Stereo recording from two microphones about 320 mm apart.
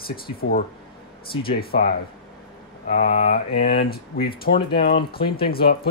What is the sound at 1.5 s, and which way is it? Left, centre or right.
Speech, left.